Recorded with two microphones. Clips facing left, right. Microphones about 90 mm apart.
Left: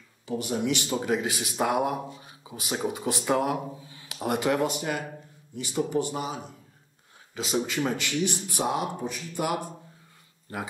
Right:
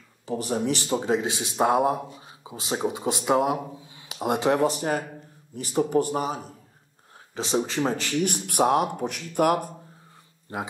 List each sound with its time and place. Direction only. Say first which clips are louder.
0.3 s speech: right 2 dB; 35° right (ahead or behind)
0.9 s speech: right 3 dB; 25° right (ahead or behind); by 6.3 s 45° right (ahead or behind)
7.3 s speech: right 3 dB; 30° right (ahead or behind)
8.2 s speech: right 8 dB; 55° right (ahead or behind)
10.5 s speech: right 3 dB; 25° right (ahead or behind)